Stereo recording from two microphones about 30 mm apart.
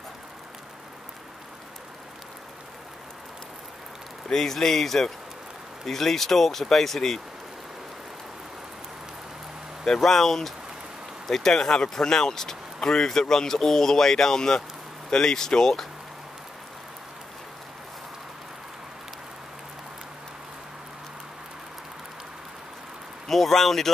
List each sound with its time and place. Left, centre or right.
4.3 s speech: centre
9.8 s speech: centre
23.2 s speech: centre